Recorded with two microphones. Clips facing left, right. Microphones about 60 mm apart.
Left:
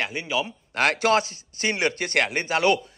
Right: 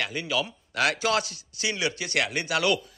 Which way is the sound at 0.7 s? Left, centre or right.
Left.